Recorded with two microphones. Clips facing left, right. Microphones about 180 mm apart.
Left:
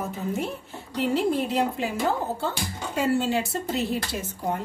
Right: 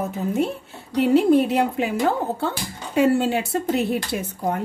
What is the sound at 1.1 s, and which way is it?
A woman's voice, 60° right (ahead or behind).